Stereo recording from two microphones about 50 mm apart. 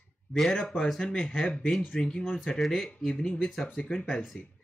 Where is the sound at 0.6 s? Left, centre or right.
Centre.